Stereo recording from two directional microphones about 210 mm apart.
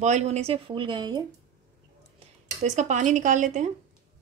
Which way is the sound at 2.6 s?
35° right (ahead or behind).